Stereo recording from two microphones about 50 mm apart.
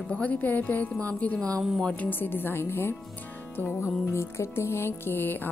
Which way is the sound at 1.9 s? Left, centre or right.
Left.